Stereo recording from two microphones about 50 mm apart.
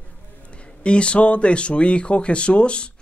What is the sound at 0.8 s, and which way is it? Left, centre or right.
Speech, left.